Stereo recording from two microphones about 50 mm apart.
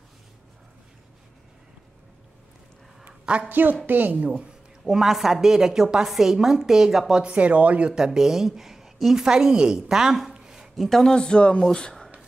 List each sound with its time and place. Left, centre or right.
3.4 s a woman's voice: right
4.8 s a woman's voice: centre
7.2 s speech: right
7.9 s a woman's voice: centre
10.3 s a sound: centre
10.9 s speech: centre
11.1 s speech: centre